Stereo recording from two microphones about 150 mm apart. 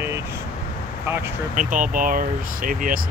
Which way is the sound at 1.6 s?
60° right (ahead or behind).